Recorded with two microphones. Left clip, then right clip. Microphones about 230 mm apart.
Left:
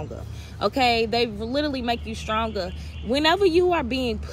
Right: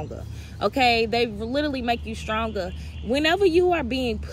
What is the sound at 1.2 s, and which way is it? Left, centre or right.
Speech, centre.